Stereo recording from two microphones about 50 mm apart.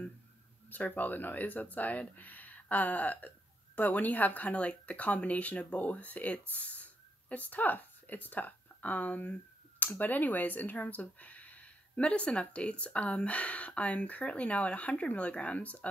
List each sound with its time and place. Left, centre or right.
0.7 s speech: left
6.5 s a sound: left
9.9 s speech: left